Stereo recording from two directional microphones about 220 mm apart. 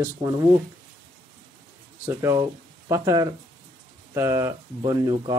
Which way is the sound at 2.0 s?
15° right (ahead or behind).